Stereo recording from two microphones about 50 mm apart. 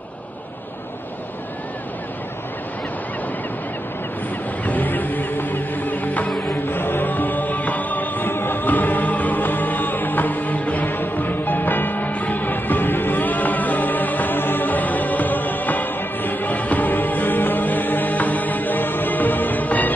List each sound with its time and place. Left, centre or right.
4.6 s music: left